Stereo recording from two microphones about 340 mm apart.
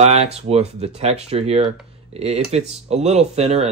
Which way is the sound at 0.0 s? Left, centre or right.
Centre.